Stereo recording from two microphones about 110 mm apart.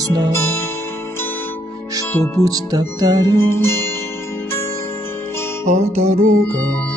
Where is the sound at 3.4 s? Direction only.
20° left (ahead or behind).